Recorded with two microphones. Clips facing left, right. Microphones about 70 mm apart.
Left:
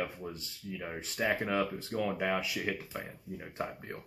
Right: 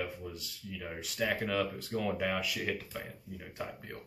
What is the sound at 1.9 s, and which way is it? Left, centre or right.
Speech, centre.